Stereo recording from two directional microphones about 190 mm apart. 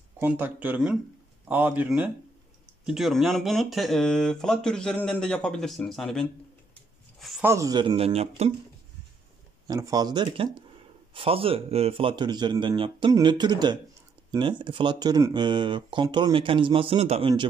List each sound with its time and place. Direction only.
0.2 s speech: 10° right (ahead or behind)
7.2 s a sound: centre (ahead or behind)
7.4 s speech: 15° right (ahead or behind); by 8.5 s 35° right (ahead or behind)
9.7 s speech: 20° right (ahead or behind)